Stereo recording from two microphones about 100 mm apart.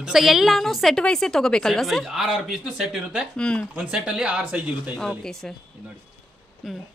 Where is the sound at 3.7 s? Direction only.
10° right (ahead or behind).